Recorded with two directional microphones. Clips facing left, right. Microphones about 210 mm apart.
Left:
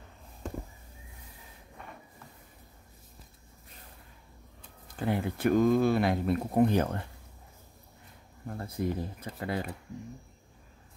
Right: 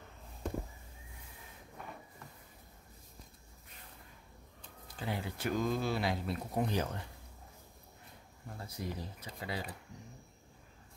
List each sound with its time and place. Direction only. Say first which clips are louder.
1.8 s a sound: even; 5° right (ahead or behind)
4.9 s speech: left 9 dB; 55° left (ahead or behind)
8.5 s speech: left 9 dB; 55° left (ahead or behind)